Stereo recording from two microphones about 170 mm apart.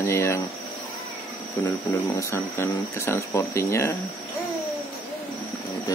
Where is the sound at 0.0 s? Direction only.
15° left (ahead or behind).